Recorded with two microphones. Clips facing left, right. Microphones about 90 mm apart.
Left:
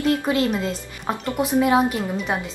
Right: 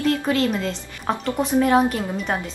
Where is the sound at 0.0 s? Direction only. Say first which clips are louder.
Even; 20° left (ahead or behind).